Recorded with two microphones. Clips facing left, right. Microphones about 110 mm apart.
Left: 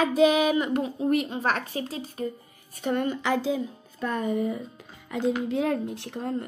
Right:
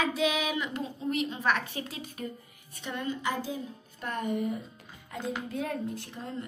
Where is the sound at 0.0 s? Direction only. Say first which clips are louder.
Left 8 dB; 45° left (ahead or behind).